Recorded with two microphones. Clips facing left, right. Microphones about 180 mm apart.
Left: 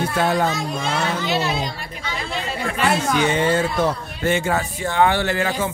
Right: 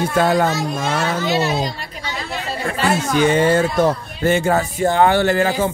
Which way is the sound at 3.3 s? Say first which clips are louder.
Right 4 dB; 45° right (ahead or behind).